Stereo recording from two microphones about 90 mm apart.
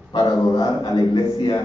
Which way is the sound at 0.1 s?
50° left (ahead or behind).